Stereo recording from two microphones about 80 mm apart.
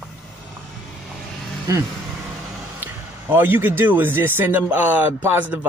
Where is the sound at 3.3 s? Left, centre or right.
Right.